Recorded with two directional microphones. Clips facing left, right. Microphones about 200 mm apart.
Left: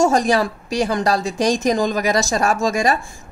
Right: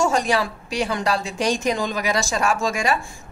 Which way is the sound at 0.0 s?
40° left (ahead or behind).